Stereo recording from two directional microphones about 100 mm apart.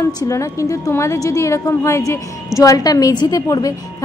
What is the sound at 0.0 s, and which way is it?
A woman's voice, 30° left (ahead or behind).